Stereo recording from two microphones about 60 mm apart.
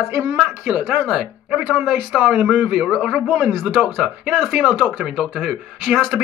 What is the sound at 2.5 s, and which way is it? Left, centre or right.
Speech, right.